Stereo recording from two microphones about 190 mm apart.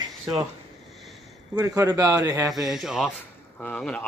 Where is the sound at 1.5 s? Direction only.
20° right (ahead or behind).